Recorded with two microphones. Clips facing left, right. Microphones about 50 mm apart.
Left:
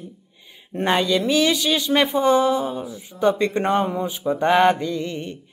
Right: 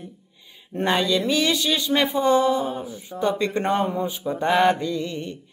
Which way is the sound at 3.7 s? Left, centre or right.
Centre.